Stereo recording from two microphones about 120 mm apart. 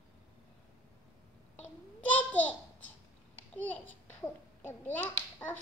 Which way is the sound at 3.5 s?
15° left (ahead or behind).